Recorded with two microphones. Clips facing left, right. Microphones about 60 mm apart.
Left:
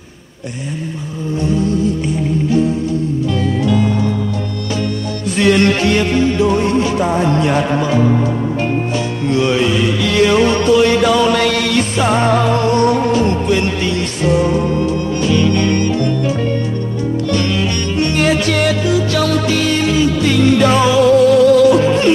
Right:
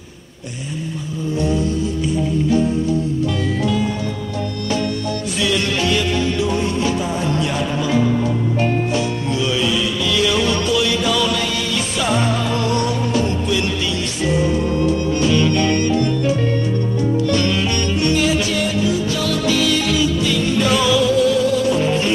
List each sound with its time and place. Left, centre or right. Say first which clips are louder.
5.3 s music: left 9 dB; left
9.3 s music: left 7 dB; left
11.3 s music: left 7 dB; left
12.0 s music: left 5 dB; left
12.9 s music: left 6 dB; left
17.9 s music: left 4 dB; left
19.2 s music: left 3 dB; left
20.2 s music: left 6 dB; left
20.6 s music: left 4 dB; left
21.0 s music: left 7 dB; left